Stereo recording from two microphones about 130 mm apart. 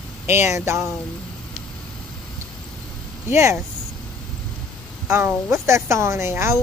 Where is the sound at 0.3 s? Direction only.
65° left (ahead or behind).